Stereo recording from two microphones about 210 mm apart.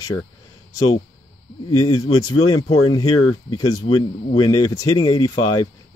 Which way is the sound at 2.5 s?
30° left (ahead or behind).